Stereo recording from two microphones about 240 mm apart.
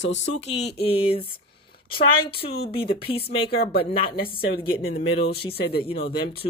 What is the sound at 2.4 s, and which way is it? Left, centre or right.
Speech, left.